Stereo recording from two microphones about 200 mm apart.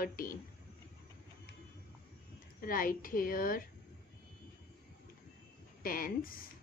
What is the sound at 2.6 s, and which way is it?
A woman's voice, 45° left (ahead or behind).